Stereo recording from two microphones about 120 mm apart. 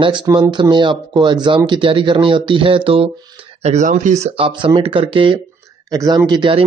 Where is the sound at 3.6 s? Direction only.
80° right.